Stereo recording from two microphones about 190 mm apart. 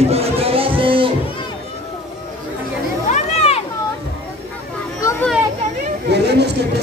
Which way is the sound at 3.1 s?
35° left (ahead or behind).